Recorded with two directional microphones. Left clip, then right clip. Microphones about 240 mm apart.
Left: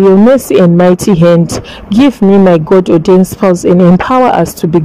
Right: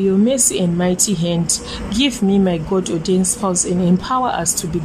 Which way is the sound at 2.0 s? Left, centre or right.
Left.